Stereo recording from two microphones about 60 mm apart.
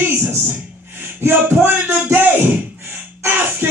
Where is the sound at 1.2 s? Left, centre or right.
Right.